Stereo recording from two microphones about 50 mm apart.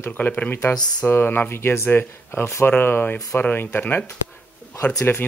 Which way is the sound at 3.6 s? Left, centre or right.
Left.